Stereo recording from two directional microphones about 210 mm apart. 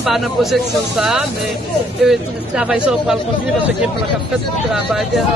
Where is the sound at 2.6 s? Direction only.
5° right (ahead or behind).